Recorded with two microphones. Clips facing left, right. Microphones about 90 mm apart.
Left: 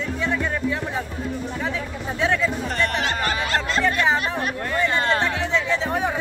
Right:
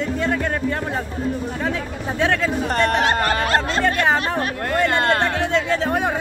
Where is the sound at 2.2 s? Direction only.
60° right (ahead or behind).